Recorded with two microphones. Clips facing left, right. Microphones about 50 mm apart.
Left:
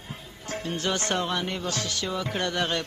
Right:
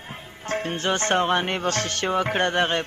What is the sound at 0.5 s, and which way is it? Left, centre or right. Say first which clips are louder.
Music: right 4 dB; right.